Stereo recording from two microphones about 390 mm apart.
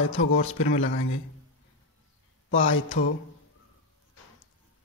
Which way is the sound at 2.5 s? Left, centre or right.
Left.